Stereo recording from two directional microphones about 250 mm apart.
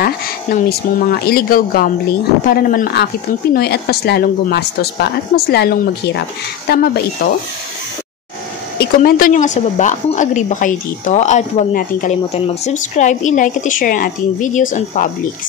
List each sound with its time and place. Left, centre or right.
0.0 s speech: left
8.7 s a woman's voice: left